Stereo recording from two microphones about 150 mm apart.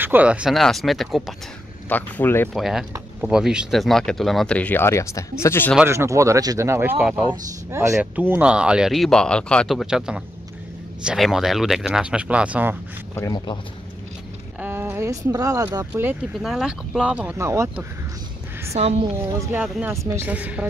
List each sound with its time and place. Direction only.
0.0 s speech: 10° right (ahead or behind)
1.9 s speech: 10° left (ahead or behind)
2.5 s speech: 5° right (ahead or behind); by 5.8 s 15° left (ahead or behind)
5.9 s speech: 20° right (ahead or behind)
7.7 s speech: 20° right (ahead or behind)
14.6 s speech: 15° right (ahead or behind)
16.3 s speech: centre (ahead or behind); by 17.8 s 20° right (ahead or behind)
18.7 s a woman's voice: 45° right (ahead or behind)
19.1 s speech: 10° right (ahead or behind)